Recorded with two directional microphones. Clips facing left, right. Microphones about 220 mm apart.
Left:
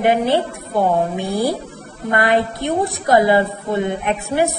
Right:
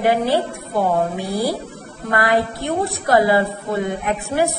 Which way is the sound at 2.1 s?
25° left (ahead or behind).